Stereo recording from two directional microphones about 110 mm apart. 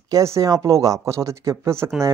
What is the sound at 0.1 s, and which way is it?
Speech, 30° right (ahead or behind).